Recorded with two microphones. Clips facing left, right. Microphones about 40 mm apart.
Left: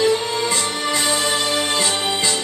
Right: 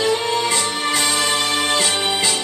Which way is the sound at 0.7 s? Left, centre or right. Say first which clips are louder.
Right 1 dB; right.